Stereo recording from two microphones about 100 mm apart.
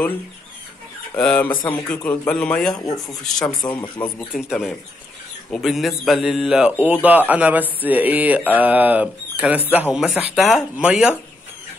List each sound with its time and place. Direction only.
1.1 s speech: 15° left (ahead or behind)
3.4 s speech: 45° left (ahead or behind)
4.3 s speech: 5° right (ahead or behind)